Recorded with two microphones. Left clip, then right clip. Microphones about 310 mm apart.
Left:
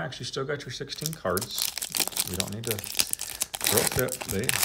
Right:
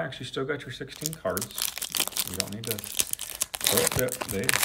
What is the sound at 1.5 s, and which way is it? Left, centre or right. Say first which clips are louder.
Crumpling: left 1 dB; centre.